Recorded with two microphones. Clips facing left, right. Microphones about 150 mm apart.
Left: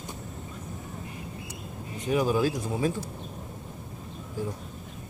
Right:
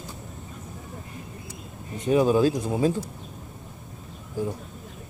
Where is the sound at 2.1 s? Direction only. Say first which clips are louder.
Right 5 dB; 25° right (ahead or behind).